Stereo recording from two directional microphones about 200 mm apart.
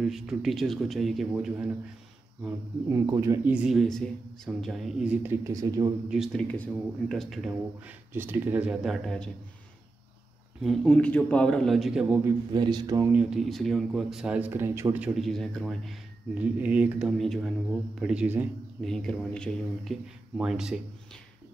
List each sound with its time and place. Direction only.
0.0 s speech: centre (ahead or behind)
2.9 s speech: 15° right (ahead or behind)
6.0 s speech: centre (ahead or behind)
10.6 s speech: centre (ahead or behind)
12.5 s speech: 20° right (ahead or behind)
13.1 s speech: 5° right (ahead or behind)
18.9 s speech: 5° left (ahead or behind)